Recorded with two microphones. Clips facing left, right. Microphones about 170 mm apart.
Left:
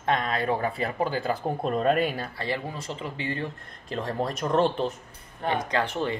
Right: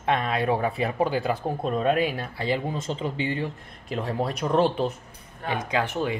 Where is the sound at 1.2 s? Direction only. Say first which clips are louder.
Right 1 dB; centre (ahead or behind).